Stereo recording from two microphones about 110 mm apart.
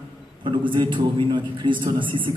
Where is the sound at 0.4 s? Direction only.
45° right (ahead or behind).